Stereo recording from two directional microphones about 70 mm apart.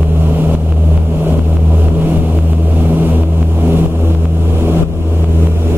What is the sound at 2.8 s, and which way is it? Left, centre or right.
Vehicle, right.